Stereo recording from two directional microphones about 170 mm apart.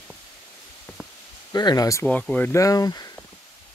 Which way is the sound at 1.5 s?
25° left (ahead or behind).